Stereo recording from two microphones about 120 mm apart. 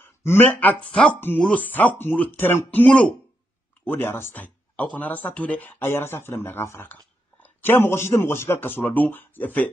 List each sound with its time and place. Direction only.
0.2 s speech: 20° left (ahead or behind)